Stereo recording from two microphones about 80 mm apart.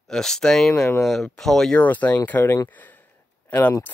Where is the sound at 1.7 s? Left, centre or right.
Centre.